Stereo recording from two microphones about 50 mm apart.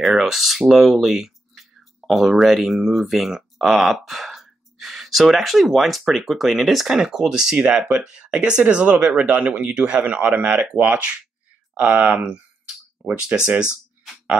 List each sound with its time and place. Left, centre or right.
0.0 s speech: centre; by 12.4 s right